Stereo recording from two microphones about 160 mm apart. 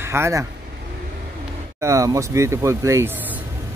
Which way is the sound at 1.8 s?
20° right (ahead or behind).